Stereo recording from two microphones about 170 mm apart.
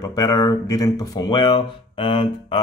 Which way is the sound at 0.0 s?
20° left (ahead or behind).